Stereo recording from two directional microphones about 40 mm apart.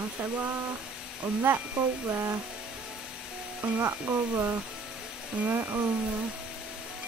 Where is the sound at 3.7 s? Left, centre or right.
Right.